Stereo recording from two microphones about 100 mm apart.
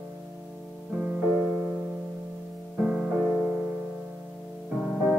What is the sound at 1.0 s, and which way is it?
Music, 15° right (ahead or behind).